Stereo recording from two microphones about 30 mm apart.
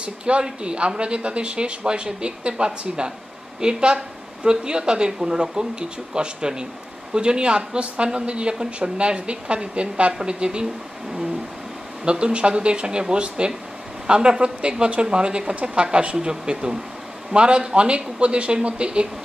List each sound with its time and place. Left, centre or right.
0.0 s speech: right
12.0 s a woman's voice: right